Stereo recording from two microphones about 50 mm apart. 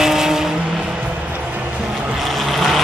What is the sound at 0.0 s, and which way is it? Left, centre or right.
Vehicle, centre.